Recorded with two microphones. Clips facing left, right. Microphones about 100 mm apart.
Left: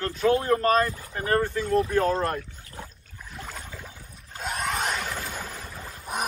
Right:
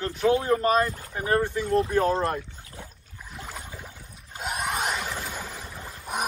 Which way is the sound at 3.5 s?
15° right (ahead or behind).